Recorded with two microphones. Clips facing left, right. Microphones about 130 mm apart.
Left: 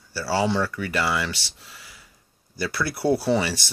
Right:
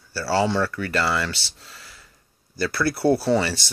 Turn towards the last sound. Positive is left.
turn(degrees=10)  # may be behind; listen again after turning